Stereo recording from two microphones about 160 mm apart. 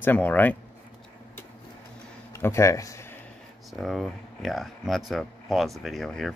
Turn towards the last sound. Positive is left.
turn(degrees=0)  # may be behind; listen again after turning